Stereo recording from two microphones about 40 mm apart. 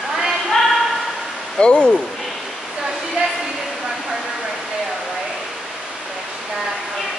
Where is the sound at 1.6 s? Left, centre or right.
Left.